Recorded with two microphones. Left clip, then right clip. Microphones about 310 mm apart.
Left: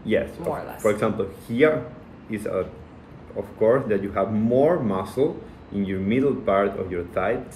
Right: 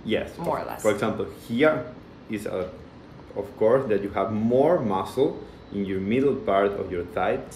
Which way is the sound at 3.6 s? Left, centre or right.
Centre.